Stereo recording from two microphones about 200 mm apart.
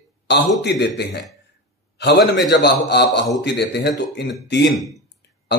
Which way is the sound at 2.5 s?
55° left (ahead or behind).